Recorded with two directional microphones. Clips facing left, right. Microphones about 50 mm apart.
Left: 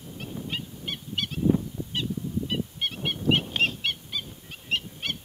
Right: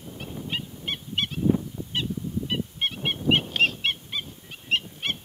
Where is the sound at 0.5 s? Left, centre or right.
Right.